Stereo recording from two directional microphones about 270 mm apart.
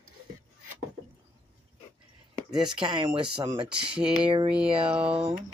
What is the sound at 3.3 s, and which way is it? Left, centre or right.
Speech, centre.